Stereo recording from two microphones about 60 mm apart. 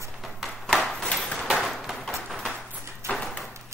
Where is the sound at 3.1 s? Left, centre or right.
Left.